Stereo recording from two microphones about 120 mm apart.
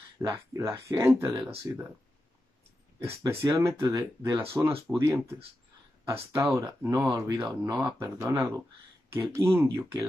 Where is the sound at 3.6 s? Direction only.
25° right (ahead or behind).